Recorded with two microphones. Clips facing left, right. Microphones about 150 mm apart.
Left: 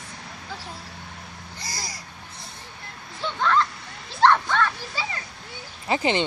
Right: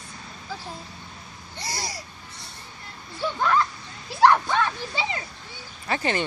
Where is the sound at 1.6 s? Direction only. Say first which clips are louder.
Right 4 dB; 30° right (ahead or behind).